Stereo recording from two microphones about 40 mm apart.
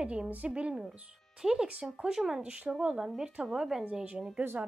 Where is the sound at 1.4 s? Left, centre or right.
Centre.